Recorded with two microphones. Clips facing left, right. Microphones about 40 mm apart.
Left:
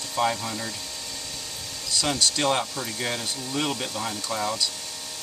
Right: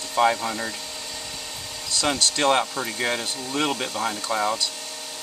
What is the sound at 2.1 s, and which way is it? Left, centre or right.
Speech, right.